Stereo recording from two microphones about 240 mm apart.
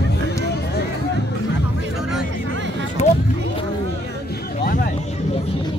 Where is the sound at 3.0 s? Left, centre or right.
Left.